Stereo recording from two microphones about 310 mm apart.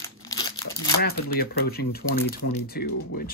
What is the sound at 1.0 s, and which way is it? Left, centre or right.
Speech, left.